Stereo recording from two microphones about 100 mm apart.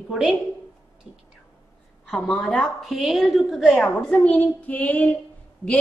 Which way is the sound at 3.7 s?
15° left (ahead or behind).